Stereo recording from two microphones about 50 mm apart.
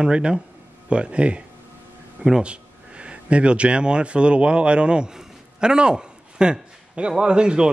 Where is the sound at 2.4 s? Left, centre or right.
Right.